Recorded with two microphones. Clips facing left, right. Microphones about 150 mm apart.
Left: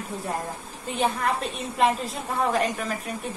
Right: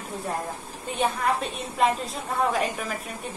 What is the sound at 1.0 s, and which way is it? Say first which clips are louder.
A woman's voice: even; centre (ahead or behind).